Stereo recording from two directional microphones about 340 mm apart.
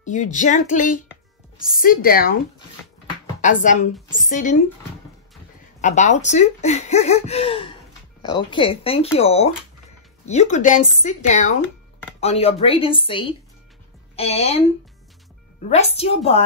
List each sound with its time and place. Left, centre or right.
0.0 s speech: left
3.3 s speech: left
5.8 s speech: left
15.7 s speech: centre